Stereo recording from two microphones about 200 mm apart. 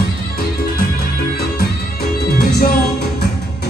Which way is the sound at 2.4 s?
50° left (ahead or behind).